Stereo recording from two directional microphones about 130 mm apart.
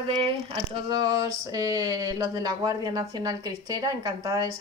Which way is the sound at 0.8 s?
30° right (ahead or behind).